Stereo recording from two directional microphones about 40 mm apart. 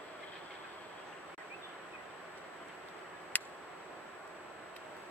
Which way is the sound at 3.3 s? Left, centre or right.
Left.